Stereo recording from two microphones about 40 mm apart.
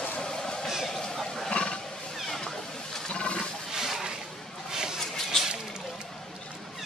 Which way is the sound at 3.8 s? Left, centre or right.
Centre.